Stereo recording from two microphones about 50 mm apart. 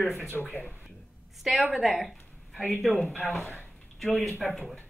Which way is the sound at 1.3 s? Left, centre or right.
Centre.